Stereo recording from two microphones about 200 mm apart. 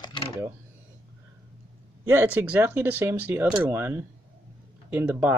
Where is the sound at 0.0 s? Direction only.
25° left (ahead or behind).